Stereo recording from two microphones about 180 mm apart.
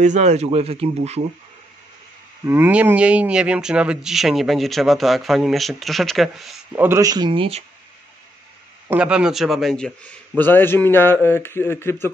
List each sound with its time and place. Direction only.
0.0 s speech: 40° right (ahead or behind)
2.4 s speech: 10° right (ahead or behind)
6.7 s speech: 15° right (ahead or behind); by 7.6 s 30° right (ahead or behind)
8.8 s speech: 5° right (ahead or behind); by 12.1 s 15° left (ahead or behind)